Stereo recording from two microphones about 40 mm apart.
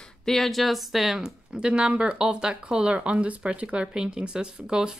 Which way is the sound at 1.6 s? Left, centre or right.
Right.